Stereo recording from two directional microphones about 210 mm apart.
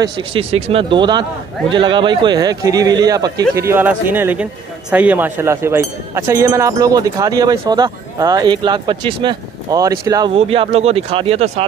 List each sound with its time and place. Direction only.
0.0 s speech: 25° right (ahead or behind)